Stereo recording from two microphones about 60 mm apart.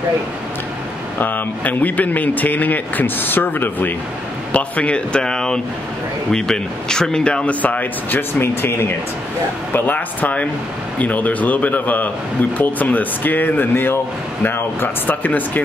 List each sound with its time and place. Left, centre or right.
1.2 s speech: left
4.5 s speech: left
9.7 s speech: left